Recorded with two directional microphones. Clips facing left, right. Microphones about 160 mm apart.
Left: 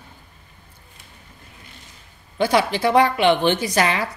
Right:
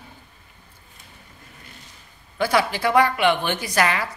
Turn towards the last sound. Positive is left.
turn(degrees=25)  # may be behind; listen again after turning